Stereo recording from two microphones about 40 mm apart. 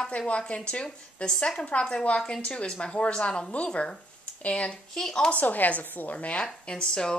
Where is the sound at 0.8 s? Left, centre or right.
Centre.